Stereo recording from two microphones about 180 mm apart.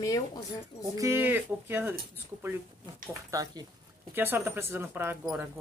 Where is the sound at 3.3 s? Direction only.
20° right (ahead or behind).